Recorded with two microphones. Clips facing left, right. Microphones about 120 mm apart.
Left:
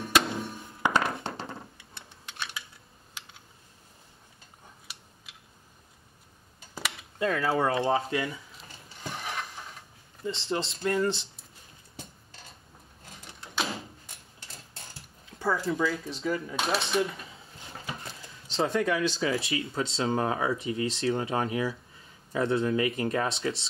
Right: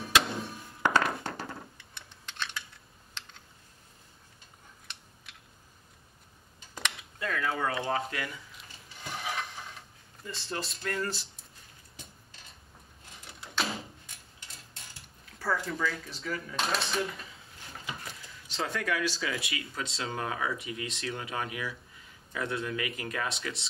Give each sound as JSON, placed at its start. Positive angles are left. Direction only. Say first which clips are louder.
{"t": 0.0, "sound": "music", "louder": "left 2 dB", "side_deg": 0}
{"t": 0.8, "sound": "a sound", "louder": "even", "side_deg": 20}
{"t": 1.8, "sound": "a sound", "louder": "left 2 dB", "side_deg": 10}
{"t": 4.9, "sound": "a sound", "louder": "right 1 dB", "side_deg": 5}
{"t": 6.7, "sound": "cutlery", "louder": "left 1 dB", "side_deg": 5}
{"t": 7.2, "sound": "speech", "louder": "left 6 dB", "side_deg": 25}
{"t": 9.1, "sound": "mechanisms", "louder": "right 1 dB", "side_deg": 0}
{"t": 10.2, "sound": "speech", "louder": "left 7 dB", "side_deg": 20}
{"t": 15.7, "sound": "speech", "louder": "left 5 dB", "side_deg": 20}
{"t": 17.0, "sound": "speech", "louder": "left 7 dB", "side_deg": 15}
{"t": 17.8, "sound": "speech", "louder": "left 1 dB", "side_deg": 30}